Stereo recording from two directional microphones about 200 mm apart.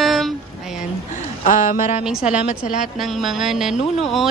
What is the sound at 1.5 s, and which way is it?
Speech, 40° left (ahead or behind).